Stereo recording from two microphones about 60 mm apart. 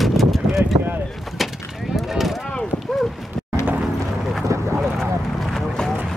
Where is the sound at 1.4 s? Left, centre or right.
Centre.